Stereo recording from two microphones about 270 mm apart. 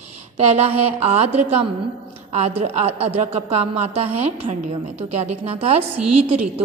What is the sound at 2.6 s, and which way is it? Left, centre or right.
Speech, right.